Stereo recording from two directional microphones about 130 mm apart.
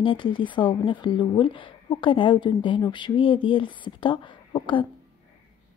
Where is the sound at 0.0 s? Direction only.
40° left (ahead or behind).